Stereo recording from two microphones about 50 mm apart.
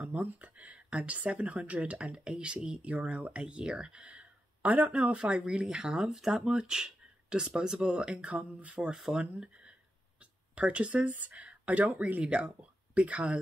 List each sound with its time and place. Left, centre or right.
0.0 s speech: right
5.8 s speech: centre; by 8.7 s right
8.7 s speech: centre